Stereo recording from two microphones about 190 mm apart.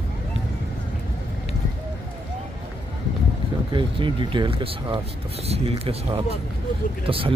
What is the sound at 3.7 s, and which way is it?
Speech, 25° right (ahead or behind).